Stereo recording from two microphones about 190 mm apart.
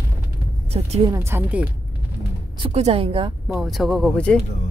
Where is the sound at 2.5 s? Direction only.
30° right (ahead or behind).